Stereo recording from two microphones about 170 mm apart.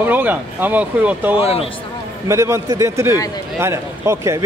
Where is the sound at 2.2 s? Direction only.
15° right (ahead or behind).